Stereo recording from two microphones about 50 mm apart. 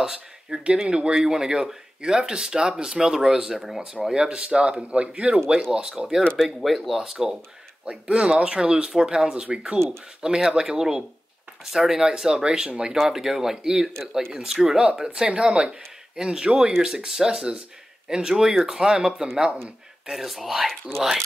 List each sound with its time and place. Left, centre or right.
0.0 s speech: centre
6.3 s speech: centre
7.8 s speech: right
13.1 s speech: centre
20.1 s speech: centre